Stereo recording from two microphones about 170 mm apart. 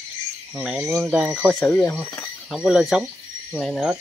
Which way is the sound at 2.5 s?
5° right (ahead or behind).